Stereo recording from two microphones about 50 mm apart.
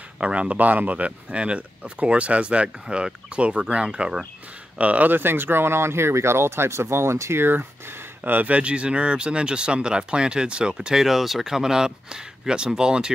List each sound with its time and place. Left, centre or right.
0.2 s speech: right
4.7 s speech: right
8.2 s speech: right; by 13.1 s centre